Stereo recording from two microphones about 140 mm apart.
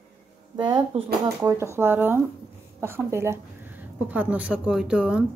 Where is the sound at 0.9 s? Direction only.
45° right (ahead or behind).